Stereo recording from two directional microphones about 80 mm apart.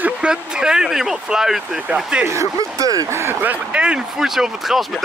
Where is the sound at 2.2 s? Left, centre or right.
Right.